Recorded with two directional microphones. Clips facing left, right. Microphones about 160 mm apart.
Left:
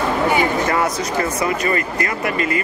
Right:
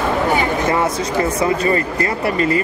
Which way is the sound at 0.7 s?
25° right (ahead or behind).